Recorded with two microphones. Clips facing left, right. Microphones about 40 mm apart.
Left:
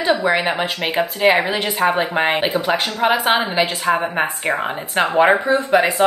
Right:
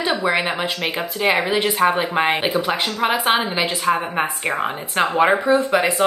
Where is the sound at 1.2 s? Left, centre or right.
Centre.